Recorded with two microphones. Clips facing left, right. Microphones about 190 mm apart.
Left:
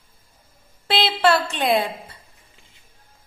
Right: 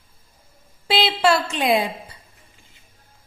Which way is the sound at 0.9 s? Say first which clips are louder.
Even; 10° right (ahead or behind).